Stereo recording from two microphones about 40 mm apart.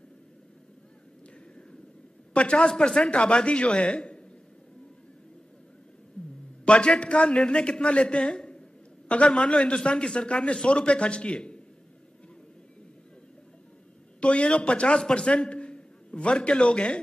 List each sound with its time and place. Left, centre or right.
2.3 s a man's voice: left
6.2 s a sound: centre
6.6 s a man's voice: left
14.2 s a man's voice: left
15.0 s a man's voice: centre
15.2 s a man's voice: left